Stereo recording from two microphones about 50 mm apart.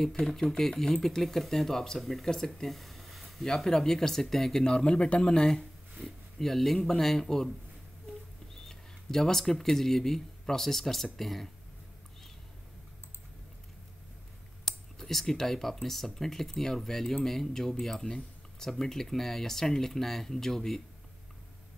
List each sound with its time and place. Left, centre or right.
0.2 s speech: centre
3.4 s speech: centre
4.6 s speech: centre
6.3 s speech: centre
8.5 s speech: centre
15.0 s speech: centre